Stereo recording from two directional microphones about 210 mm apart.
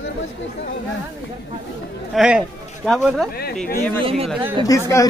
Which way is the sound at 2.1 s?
5° right (ahead or behind).